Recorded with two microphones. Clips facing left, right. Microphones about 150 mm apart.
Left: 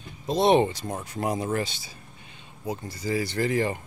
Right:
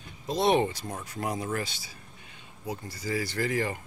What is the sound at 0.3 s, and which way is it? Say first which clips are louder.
Speech: left 4 dB; 25° left (ahead or behind).